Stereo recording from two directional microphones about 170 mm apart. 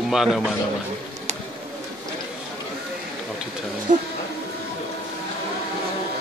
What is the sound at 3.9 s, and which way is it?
Speech, 50° right (ahead or behind).